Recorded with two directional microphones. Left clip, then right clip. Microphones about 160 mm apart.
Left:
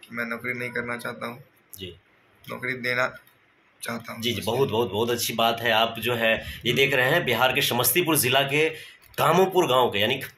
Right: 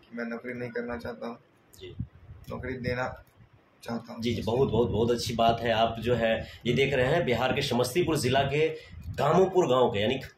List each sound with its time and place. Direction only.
0.1 s a man's voice: 20° right (ahead or behind)
2.6 s a man's voice: 20° right (ahead or behind)
4.5 s speech: 15° left (ahead or behind)